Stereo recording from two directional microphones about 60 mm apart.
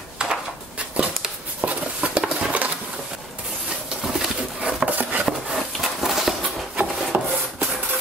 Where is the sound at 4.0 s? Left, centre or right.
Centre.